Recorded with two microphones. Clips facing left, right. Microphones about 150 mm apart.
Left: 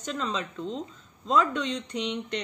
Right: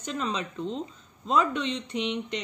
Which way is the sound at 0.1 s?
10° right (ahead or behind).